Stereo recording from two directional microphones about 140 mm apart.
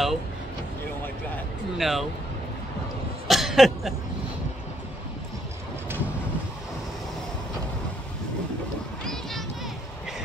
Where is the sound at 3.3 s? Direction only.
Centre (ahead or behind).